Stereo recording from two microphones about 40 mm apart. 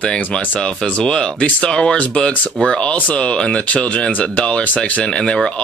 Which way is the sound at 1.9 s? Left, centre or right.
Left.